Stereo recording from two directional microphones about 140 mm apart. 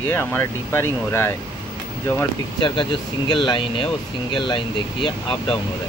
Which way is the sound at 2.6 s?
35° left (ahead or behind).